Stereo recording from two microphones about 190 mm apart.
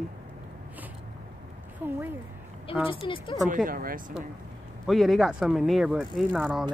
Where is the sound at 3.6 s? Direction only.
50° right (ahead or behind).